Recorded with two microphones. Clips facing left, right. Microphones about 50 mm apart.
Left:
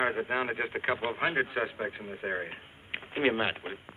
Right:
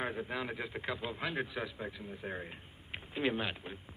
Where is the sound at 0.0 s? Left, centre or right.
Left.